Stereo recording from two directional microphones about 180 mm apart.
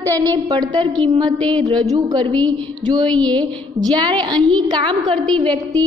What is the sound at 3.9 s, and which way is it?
A woman's voice, 25° right (ahead or behind).